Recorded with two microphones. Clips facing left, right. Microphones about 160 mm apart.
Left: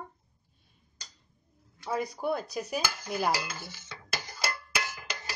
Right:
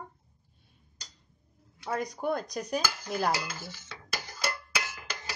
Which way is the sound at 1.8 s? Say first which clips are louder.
Even; centre (ahead or behind).